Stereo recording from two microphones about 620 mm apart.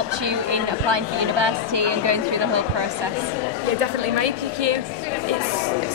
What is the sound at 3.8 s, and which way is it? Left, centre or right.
A woman's voice, right.